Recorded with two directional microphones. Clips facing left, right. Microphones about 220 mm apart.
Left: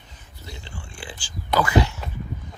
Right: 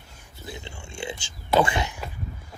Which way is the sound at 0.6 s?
25° right (ahead or behind).